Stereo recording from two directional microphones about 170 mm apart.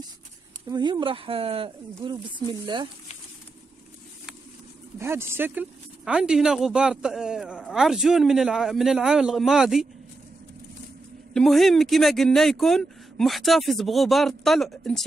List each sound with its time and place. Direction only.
0.7 s speech: 25° right (ahead or behind)
4.9 s speech: 15° right (ahead or behind)
11.3 s speech: centre (ahead or behind)